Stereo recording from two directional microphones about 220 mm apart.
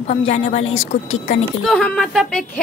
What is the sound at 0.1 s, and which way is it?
Speech, 30° left (ahead or behind).